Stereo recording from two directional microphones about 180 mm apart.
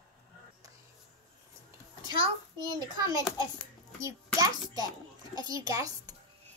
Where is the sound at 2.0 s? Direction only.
30° right (ahead or behind).